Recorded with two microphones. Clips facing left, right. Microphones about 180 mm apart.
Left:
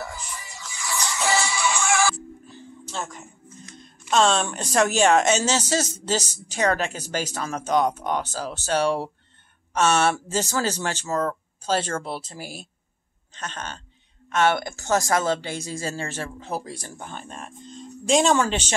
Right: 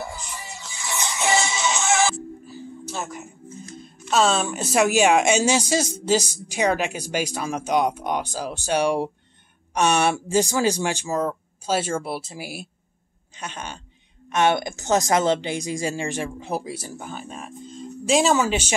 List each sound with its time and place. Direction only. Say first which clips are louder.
0.6 s music: left 1 dB; 25° right (ahead or behind)
2.4 s music: right 6 dB; 5° right (ahead or behind)
4.1 s speech: even; 5° right (ahead or behind)